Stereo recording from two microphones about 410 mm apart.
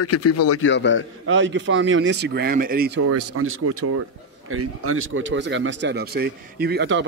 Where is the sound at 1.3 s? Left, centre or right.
Right.